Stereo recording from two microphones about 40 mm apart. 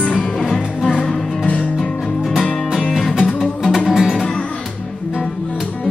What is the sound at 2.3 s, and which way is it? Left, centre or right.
Music, centre.